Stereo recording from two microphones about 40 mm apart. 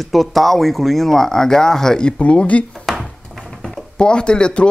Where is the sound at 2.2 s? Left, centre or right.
Left.